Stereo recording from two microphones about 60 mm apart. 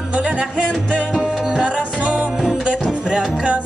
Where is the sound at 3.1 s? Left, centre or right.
Centre.